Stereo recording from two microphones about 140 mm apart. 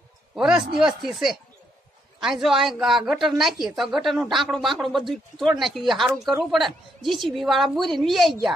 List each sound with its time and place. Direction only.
0.4 s a man's voice: 5° right (ahead or behind)